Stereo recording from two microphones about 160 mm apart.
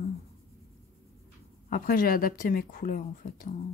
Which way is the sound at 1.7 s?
65° left (ahead or behind).